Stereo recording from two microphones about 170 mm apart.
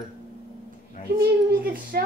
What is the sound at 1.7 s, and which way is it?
Speech, 55° right (ahead or behind).